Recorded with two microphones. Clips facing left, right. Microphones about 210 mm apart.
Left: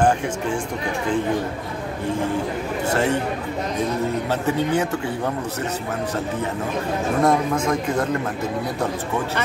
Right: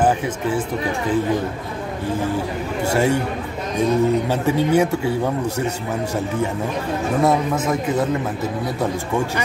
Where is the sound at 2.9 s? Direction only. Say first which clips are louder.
Right 3 dB; 10° right (ahead or behind).